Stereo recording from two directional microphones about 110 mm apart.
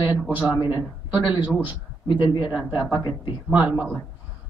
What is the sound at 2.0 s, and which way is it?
Speech, 45° left (ahead or behind).